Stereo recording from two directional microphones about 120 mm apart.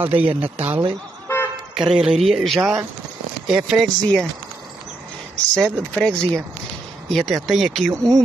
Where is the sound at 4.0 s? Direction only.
10° left (ahead or behind).